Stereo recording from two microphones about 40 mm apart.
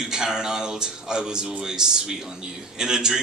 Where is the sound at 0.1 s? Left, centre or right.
Centre.